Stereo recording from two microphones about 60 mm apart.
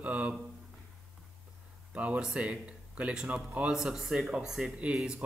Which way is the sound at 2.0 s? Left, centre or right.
Centre.